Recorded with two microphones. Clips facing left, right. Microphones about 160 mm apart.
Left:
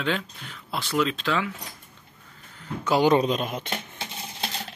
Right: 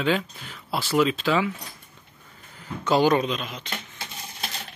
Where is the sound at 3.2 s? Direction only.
45° left (ahead or behind).